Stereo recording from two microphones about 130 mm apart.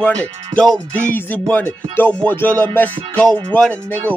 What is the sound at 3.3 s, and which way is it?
Speech, 35° right (ahead or behind).